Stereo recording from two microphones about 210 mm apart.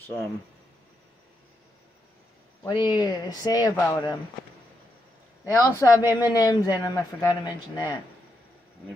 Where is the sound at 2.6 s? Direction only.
20° left (ahead or behind).